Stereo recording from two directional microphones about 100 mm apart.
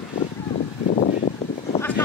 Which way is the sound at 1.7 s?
75° left (ahead or behind).